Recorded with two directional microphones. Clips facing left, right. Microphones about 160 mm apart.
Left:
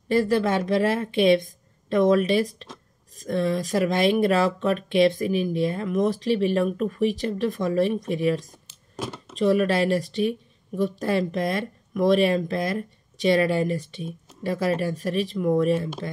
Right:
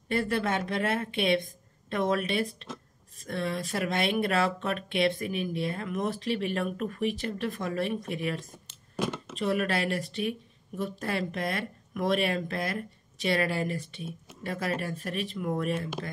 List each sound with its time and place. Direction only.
0.1 s speech: 35° left (ahead or behind)